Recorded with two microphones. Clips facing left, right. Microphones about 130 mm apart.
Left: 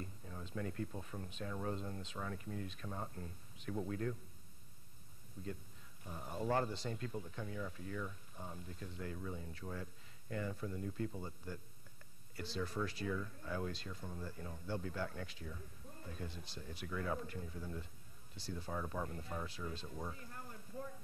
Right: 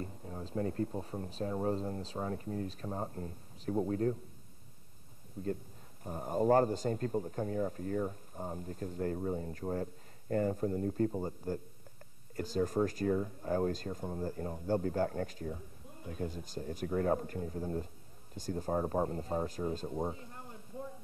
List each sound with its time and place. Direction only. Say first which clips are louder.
0.0 s speech: right 7 dB; 35° right (ahead or behind)
5.4 s speech: right 10 dB; 40° right (ahead or behind)
20.1 s a sound: right 6 dB; 20° right (ahead or behind)